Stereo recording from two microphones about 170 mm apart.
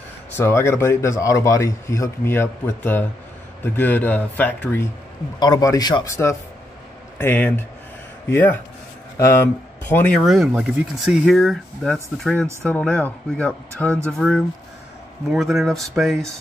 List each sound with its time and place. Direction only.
0.4 s speech: 15° left (ahead or behind)
5.4 s speech: 20° left (ahead or behind)
9.8 s speech: 10° left (ahead or behind)
10.2 s speech: centre (ahead or behind)